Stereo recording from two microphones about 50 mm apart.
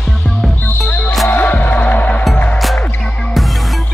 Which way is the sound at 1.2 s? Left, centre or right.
Left.